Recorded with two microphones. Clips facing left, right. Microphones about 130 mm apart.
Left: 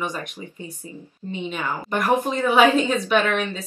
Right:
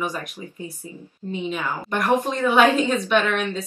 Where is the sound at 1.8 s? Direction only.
5° left (ahead or behind).